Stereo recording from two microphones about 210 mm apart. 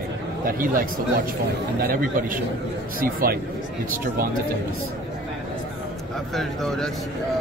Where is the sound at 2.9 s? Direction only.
45° right (ahead or behind).